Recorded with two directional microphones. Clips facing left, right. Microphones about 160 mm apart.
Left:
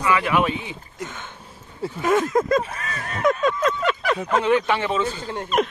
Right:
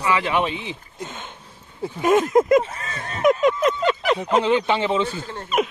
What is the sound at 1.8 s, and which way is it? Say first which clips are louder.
Speech: right 2 dB; 15° right (ahead or behind).